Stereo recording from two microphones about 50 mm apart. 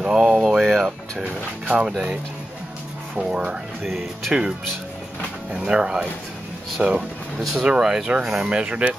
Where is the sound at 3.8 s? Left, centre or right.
Centre.